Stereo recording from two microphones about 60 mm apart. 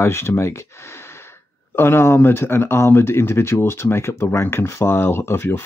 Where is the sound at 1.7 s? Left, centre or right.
Left.